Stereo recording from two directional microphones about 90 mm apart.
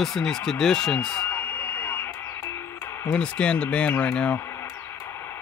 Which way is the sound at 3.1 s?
10° left (ahead or behind).